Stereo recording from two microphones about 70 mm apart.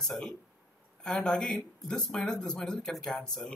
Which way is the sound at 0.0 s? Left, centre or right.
Centre.